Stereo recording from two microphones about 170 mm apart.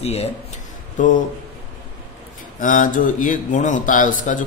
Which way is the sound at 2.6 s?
50° left (ahead or behind).